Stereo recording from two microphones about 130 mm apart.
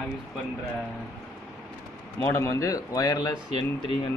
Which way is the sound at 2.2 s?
25° left (ahead or behind).